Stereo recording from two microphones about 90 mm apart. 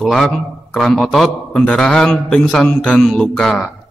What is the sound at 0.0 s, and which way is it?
A man's voice, centre (ahead or behind).